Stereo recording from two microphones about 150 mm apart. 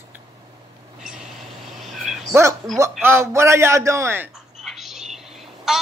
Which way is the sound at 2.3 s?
20° right (ahead or behind).